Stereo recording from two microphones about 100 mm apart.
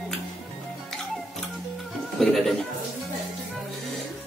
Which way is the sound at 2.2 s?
Centre (ahead or behind).